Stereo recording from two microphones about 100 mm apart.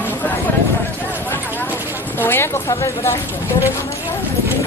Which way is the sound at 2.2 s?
25° left (ahead or behind).